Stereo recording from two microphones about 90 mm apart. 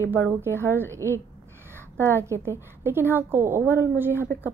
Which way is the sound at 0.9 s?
30° right (ahead or behind).